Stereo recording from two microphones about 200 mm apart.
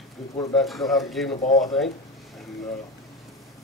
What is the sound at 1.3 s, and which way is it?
Speech, 40° left (ahead or behind).